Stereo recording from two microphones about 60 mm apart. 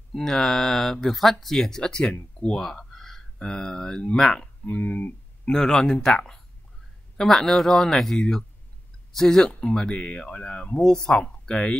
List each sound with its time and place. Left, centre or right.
0.1 s speech: centre
2.6 s speech: centre
4.6 s speech: left
5.5 s speech: centre